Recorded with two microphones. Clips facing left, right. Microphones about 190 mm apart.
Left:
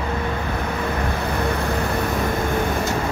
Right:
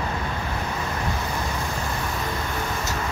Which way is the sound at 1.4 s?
60° left (ahead or behind).